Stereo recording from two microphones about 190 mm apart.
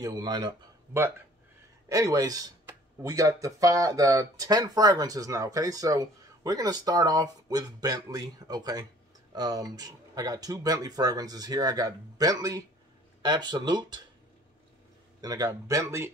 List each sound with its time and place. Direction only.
0.0 s speech: 20° right (ahead or behind)
1.9 s speech: 20° right (ahead or behind)
15.2 s speech: 20° right (ahead or behind)